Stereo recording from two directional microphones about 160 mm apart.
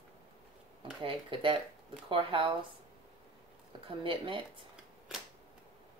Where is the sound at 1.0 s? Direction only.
30° right (ahead or behind).